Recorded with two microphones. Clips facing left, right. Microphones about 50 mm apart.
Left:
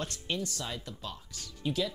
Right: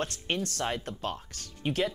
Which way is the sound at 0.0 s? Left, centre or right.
Right.